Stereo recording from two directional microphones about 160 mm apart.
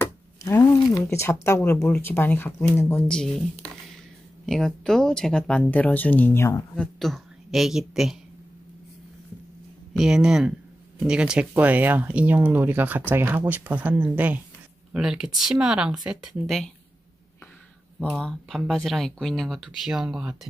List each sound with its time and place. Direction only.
0.0 s a sound: 20° left (ahead or behind)
0.9 s speech: 15° left (ahead or behind)
4.5 s speech: 5° left (ahead or behind)
6.7 s speech: centre (ahead or behind)
9.9 s speech: 5° right (ahead or behind)
17.9 s speech: 5° left (ahead or behind)